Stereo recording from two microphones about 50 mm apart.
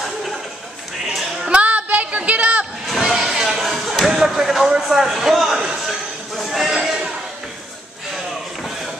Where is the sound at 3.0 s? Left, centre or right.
Centre.